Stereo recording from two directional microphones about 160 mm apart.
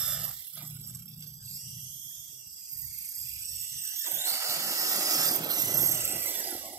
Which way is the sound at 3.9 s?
15° right (ahead or behind).